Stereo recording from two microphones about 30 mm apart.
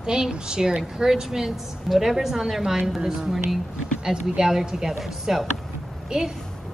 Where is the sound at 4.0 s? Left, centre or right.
Right.